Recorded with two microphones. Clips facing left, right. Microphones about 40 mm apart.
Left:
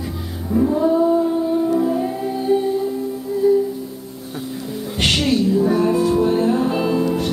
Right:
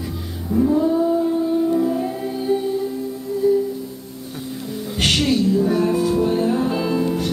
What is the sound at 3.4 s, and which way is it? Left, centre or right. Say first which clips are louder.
Music: left 2 dB; centre.